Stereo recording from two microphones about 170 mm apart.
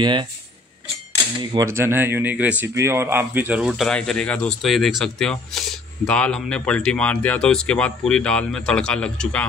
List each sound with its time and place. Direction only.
0.0 s speech: 25° right (ahead or behind)
1.5 s speech: 20° right (ahead or behind); by 9.5 s 5° left (ahead or behind)